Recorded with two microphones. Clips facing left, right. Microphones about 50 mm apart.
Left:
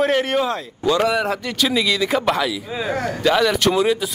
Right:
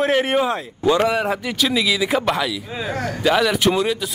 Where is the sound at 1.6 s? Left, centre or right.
Centre.